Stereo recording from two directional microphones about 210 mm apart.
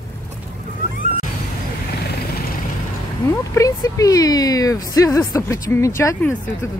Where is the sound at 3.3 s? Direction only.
15° left (ahead or behind).